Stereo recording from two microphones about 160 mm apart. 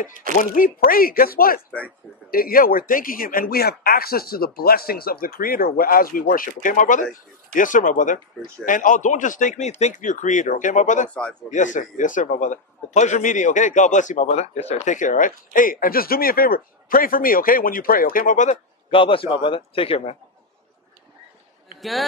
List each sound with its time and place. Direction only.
0.1 s speech: 55° right (ahead or behind)
0.4 s a man's voice: 60° left (ahead or behind)
18.9 s a man's voice: 35° left (ahead or behind)